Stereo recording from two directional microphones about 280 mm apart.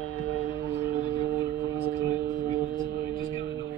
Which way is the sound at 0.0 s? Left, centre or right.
Centre.